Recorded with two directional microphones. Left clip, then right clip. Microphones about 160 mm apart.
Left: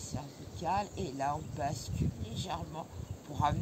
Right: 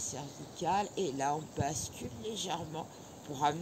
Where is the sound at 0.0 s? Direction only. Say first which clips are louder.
Right 3 dB; 25° left (ahead or behind).